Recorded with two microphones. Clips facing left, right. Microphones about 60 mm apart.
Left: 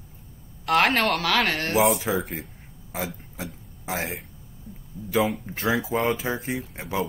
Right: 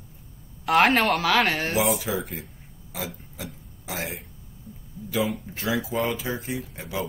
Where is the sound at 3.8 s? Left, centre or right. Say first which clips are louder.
Left 3 dB; left.